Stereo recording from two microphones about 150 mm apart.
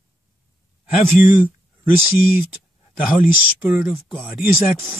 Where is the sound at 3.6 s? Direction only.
10° right (ahead or behind).